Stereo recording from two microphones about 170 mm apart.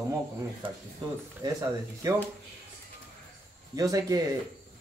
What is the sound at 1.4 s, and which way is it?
Speech, 20° right (ahead or behind).